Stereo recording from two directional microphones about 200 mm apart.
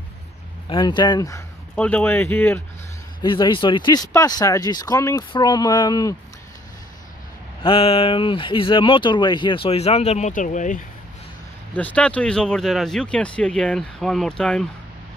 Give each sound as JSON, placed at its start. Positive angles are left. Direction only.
{"t": 0.7, "sound": "speech", "side_deg": 20}
{"t": 1.8, "sound": "speech", "side_deg": 10}
{"t": 3.2, "sound": "speech", "side_deg": 25}
{"t": 7.6, "sound": "speech", "side_deg": 30}
{"t": 11.7, "sound": "speech", "side_deg": 5}